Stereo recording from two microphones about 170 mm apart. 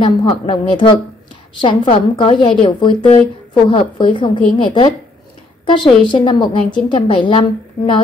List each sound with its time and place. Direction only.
0.0 s a woman's voice: 30° left (ahead or behind)